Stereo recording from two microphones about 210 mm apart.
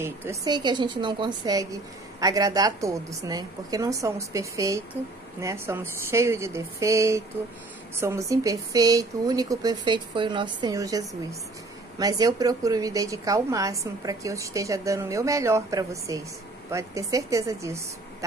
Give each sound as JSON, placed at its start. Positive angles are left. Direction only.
{"t": 0.0, "sound": "a woman's voice", "side_deg": -15}